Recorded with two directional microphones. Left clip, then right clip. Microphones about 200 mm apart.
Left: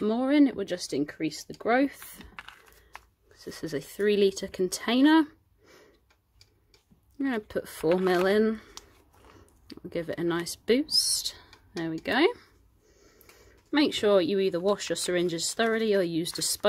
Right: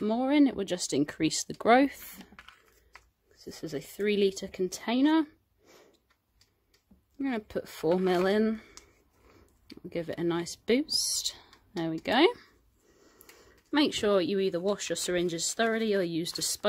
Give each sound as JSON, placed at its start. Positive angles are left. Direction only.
{"t": 0.0, "sound": "speech", "side_deg": 0}
{"t": 3.3, "sound": "speech", "side_deg": 0}
{"t": 7.2, "sound": "speech", "side_deg": -5}